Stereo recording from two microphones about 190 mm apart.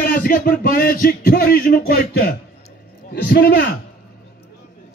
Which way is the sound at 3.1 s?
55° left (ahead or behind).